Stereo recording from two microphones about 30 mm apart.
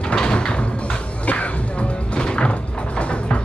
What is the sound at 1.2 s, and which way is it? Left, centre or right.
Music, left.